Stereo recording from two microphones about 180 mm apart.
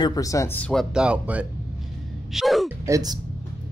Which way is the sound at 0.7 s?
Centre (ahead or behind).